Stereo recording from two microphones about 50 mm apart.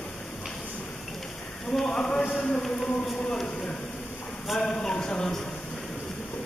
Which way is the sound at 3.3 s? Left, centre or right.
Centre.